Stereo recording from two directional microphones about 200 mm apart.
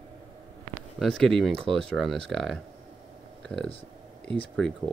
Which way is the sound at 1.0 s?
Centre (ahead or behind).